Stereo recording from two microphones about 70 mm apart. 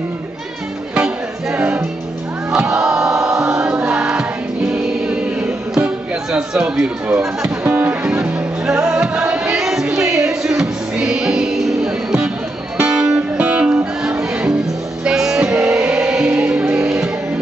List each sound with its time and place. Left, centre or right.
0.9 s music: centre
6.3 s chatter: centre
7.6 s music: right